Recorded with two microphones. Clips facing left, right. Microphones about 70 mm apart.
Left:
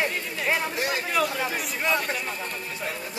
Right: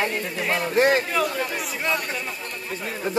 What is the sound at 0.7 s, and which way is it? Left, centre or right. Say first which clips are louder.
Speech: right 10 dB; right.